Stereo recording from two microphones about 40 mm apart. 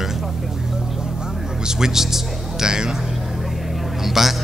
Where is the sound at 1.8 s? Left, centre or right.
Centre.